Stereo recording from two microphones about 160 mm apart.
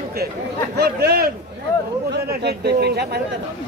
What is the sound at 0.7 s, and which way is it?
A man's voice, 85° right.